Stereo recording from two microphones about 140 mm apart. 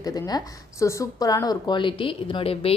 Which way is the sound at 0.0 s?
25° left (ahead or behind).